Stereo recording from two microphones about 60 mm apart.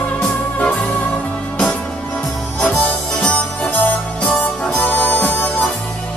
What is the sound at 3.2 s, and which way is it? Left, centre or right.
Music, left.